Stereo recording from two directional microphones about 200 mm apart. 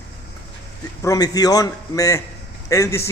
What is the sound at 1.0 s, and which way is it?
A man's voice, 20° left (ahead or behind).